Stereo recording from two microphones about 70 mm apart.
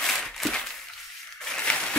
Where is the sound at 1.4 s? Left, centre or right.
Centre.